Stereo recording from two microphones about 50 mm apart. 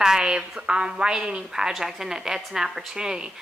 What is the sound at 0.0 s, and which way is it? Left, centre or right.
A woman's voice, centre.